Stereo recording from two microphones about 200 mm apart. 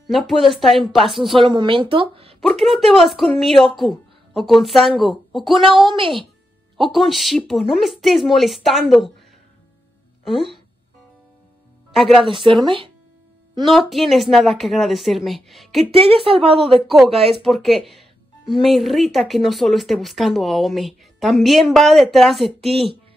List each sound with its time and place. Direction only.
0.0 s speech: centre (ahead or behind)
1.3 s a woman's voice: 25° right (ahead or behind)
2.4 s speech: centre (ahead or behind)
5.9 s a woman's voice: 25° right (ahead or behind)
6.9 s speech: centre (ahead or behind)
10.2 s speech: centre (ahead or behind)
11.9 s speech: centre (ahead or behind)
12.3 s a woman's voice: 25° right (ahead or behind)
13.7 s speech: centre (ahead or behind)
15.9 s a woman's voice: 30° right (ahead or behind)
16.7 s speech: centre (ahead or behind)